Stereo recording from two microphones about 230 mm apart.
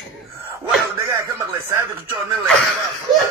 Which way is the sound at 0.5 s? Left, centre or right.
Centre.